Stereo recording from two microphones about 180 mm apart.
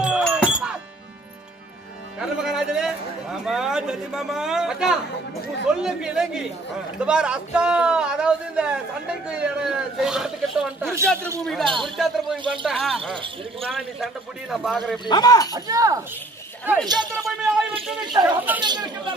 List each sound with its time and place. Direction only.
0.0 s a sound: 5° right (ahead or behind)
2.1 s a man's voice: 5° right (ahead or behind)
10.9 s speech: 15° right (ahead or behind)
11.4 s a man's voice: centre (ahead or behind)
15.0 s speech: 20° left (ahead or behind)
15.5 s speech: 20° right (ahead or behind)
18.2 s speech: 10° right (ahead or behind)
18.6 s speech: 25° right (ahead or behind)